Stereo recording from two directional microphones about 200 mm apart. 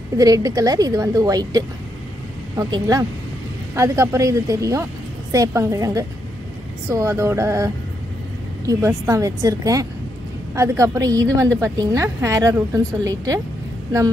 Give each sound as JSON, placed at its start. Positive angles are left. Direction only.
{"t": 0.2, "sound": "a woman's voice", "side_deg": -20}